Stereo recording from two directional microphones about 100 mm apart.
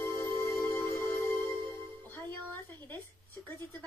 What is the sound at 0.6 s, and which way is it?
Music, 20° left (ahead or behind).